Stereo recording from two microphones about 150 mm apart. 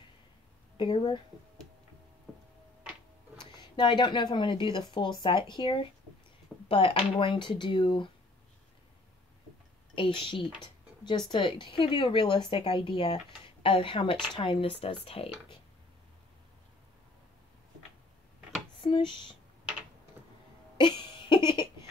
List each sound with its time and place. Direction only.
0.7 s speech: 35° left (ahead or behind)
2.3 s a sound: centre (ahead or behind)
3.3 s speech: 30° left (ahead or behind)
9.9 s speech: 35° left (ahead or behind)
18.8 s speech: 35° left (ahead or behind)
20.7 s a sound: 30° left (ahead or behind)